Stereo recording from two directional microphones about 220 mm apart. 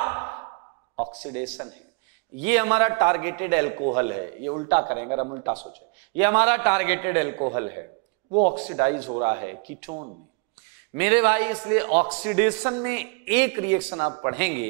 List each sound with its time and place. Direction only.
0.0 s sigh: 20° right (ahead or behind)
0.9 s speech: 25° right (ahead or behind)
2.4 s a man's voice: 15° right (ahead or behind)
6.4 s a man's voice: 15° right (ahead or behind)
11.0 s a man's voice: 15° right (ahead or behind)
11.9 s a man's voice: 25° right (ahead or behind)
12.9 s a man's voice: 10° right (ahead or behind)